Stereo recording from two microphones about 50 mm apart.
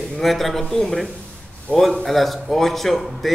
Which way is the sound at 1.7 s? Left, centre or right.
Left.